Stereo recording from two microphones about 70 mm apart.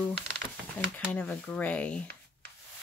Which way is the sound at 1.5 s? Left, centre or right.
Centre.